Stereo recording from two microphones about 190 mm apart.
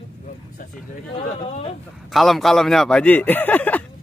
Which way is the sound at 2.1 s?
Centre (ahead or behind).